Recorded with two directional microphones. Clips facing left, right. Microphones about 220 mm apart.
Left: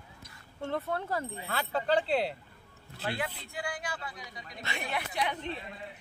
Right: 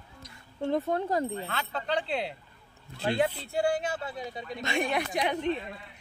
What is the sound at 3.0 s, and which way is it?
Speech, 30° right (ahead or behind).